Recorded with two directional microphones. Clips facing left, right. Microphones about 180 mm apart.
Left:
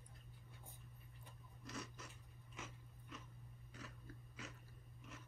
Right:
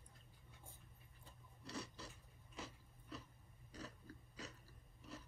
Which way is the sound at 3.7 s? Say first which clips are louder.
Right 3 dB; 35° right (ahead or behind).